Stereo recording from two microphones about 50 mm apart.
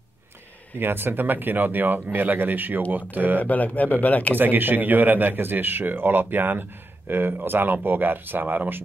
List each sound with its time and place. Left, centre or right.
0.7 s speech: right
3.3 s speech: left
4.4 s speech: right